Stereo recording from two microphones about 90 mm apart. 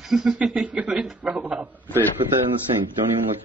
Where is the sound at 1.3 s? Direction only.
15° right (ahead or behind).